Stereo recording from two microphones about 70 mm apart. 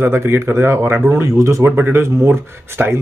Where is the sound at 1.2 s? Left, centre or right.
Right.